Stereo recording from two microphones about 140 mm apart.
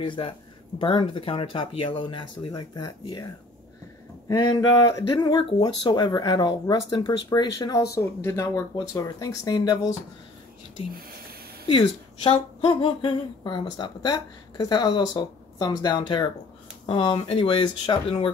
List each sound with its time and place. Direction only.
0.0 s speech: 35° left (ahead or behind)
4.3 s speech: 30° left (ahead or behind)
11.6 s speech: 35° left (ahead or behind)